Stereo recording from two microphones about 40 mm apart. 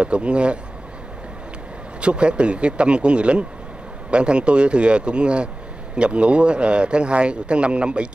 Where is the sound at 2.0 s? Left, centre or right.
Right.